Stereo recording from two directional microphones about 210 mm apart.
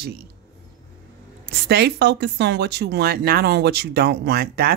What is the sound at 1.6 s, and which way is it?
A woman's voice, 50° right (ahead or behind).